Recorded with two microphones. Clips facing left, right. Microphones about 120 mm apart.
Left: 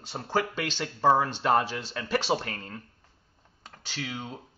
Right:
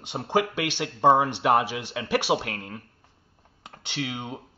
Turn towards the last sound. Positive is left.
turn(degrees=-20)  # may be behind; listen again after turning